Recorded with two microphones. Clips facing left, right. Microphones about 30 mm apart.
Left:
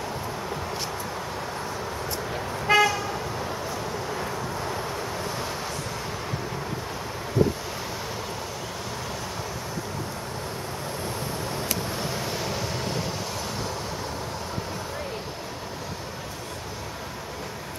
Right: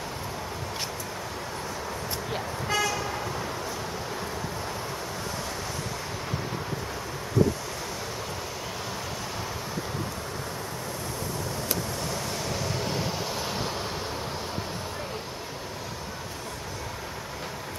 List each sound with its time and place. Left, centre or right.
2.7 s toot: left
12.0 s vehicle: centre